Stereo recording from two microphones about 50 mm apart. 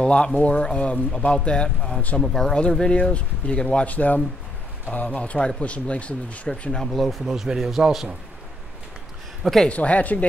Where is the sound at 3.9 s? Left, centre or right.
Left.